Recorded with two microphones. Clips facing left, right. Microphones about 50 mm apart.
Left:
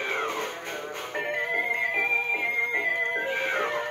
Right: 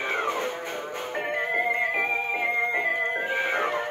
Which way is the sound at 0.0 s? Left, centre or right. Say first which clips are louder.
Right 2 dB; centre.